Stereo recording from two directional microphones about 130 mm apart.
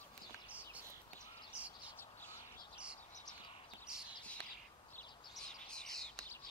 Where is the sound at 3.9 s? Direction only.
5° right (ahead or behind).